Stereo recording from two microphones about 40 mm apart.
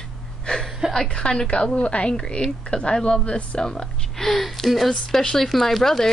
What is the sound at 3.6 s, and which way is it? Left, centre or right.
Speech, centre.